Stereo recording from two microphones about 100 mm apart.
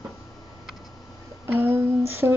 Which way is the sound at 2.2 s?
30° right (ahead or behind).